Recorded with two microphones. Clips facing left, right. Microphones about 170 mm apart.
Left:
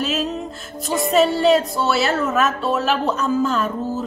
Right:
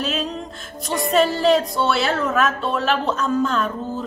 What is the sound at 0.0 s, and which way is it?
Music, centre (ahead or behind).